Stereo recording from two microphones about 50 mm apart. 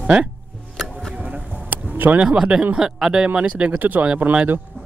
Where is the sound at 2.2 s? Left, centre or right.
Centre.